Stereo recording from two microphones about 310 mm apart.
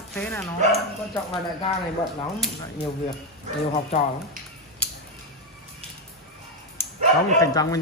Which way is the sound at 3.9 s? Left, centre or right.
Left.